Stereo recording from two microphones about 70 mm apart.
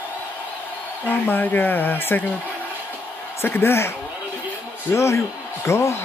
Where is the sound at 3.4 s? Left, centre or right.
Left.